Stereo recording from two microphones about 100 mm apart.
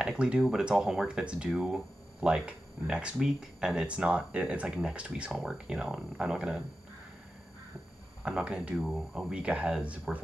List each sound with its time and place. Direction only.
0.0 s speech: 10° right (ahead or behind)
8.2 s speech: 10° right (ahead or behind)